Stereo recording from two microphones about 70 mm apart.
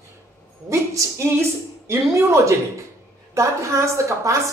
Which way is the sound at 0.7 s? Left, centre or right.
Right.